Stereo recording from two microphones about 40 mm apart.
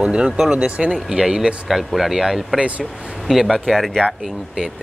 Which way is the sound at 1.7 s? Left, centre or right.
Centre.